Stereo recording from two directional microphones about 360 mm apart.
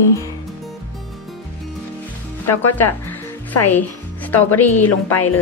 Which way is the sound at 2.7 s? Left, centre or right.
Centre.